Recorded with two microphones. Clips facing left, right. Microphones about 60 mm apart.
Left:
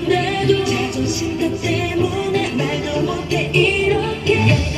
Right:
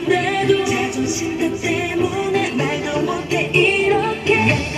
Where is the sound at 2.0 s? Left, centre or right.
Centre.